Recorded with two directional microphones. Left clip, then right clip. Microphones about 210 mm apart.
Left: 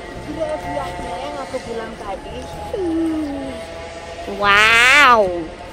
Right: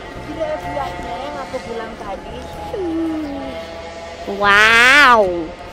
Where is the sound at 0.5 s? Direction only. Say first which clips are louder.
Right 1 dB; 25° left (ahead or behind).